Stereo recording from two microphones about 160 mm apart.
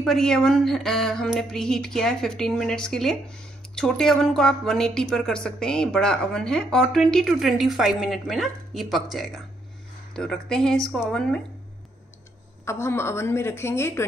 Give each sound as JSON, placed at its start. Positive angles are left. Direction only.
{"t": 0.0, "sound": "a woman's voice", "side_deg": 5}
{"t": 12.6, "sound": "a woman's voice", "side_deg": 15}